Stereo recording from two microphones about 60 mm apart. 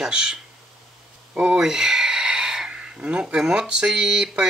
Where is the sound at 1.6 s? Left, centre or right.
Centre.